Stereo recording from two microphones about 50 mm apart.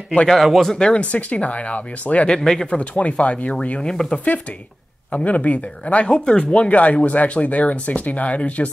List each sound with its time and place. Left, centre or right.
0.3 s speech: centre
1.0 s speech: left
2.2 s speech: centre
2.6 s speech: left
3.9 s speech: centre
5.1 s speech: left